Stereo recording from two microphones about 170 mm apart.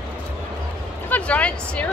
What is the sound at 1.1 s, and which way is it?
Speech, 10° left (ahead or behind).